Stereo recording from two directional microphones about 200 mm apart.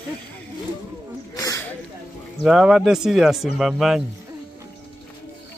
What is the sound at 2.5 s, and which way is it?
Speech, 5° right (ahead or behind).